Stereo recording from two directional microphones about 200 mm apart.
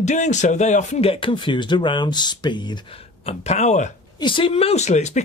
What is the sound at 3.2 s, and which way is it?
Speech, 35° left (ahead or behind).